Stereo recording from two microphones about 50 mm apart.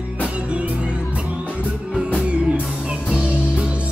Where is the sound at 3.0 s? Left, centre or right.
Right.